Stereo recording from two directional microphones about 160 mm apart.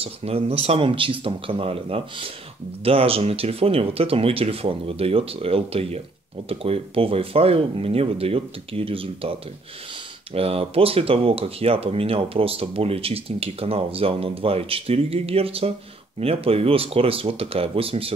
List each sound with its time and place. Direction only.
0.0 s speech: 40° right (ahead or behind)